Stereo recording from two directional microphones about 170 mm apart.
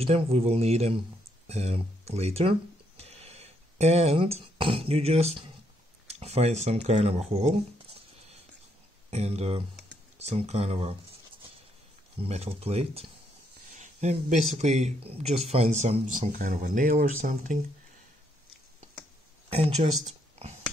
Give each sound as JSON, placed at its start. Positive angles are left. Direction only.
{"t": 0.0, "sound": "speech", "side_deg": -35}
{"t": 3.0, "sound": "a sound", "side_deg": -35}
{"t": 6.0, "sound": "speech", "side_deg": -40}
{"t": 9.1, "sound": "speech", "side_deg": -40}
{"t": 12.2, "sound": "speech", "side_deg": -35}
{"t": 19.5, "sound": "speech", "side_deg": -35}